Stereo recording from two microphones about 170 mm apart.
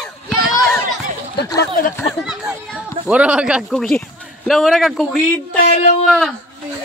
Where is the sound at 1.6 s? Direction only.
55° left (ahead or behind).